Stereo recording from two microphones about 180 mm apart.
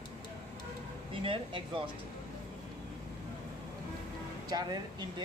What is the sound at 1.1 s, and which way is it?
Speech, 30° right (ahead or behind).